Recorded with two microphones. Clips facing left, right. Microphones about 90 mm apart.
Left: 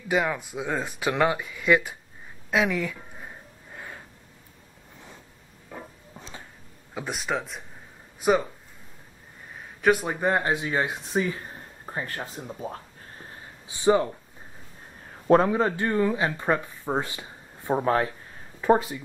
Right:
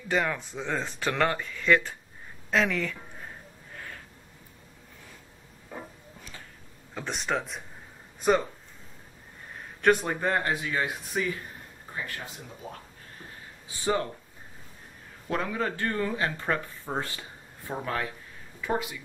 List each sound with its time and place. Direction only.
0.1 s speech: 10° left (ahead or behind)
2.5 s a sound: 10° left (ahead or behind)
6.1 s a sound: 25° left (ahead or behind)
6.9 s speech: 10° left (ahead or behind)
9.5 s a sound: 5° left (ahead or behind)
10.2 s speech: 20° left (ahead or behind)
11.8 s speech: 40° left (ahead or behind)
13.7 s speech: 20° left (ahead or behind)
15.2 s speech: 35° left (ahead or behind)
15.7 s speech: 20° left (ahead or behind)
17.6 s speech: 30° left (ahead or behind)